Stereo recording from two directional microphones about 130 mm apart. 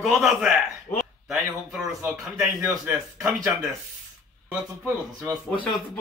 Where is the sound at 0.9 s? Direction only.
15° left (ahead or behind).